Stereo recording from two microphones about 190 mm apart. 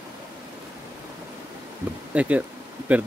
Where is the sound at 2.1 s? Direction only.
5° right (ahead or behind).